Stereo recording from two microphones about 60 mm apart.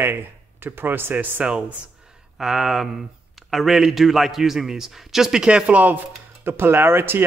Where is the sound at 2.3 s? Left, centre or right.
Centre; by 6.0 s right.